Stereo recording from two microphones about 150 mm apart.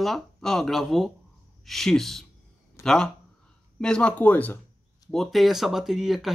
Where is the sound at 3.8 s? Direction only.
5° left (ahead or behind).